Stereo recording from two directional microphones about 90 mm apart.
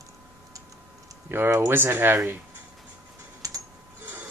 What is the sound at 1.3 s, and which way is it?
Speech, 25° right (ahead or behind).